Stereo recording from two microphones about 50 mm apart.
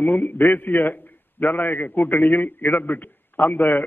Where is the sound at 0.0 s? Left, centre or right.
Left.